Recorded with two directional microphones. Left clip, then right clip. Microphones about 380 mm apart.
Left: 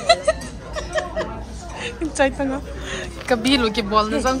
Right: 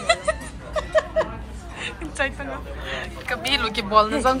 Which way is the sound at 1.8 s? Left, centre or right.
Centre.